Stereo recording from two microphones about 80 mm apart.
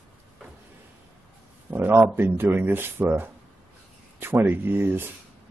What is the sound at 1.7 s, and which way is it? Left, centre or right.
Speech, right.